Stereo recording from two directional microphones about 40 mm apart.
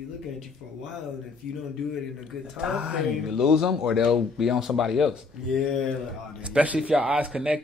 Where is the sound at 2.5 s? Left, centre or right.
Right.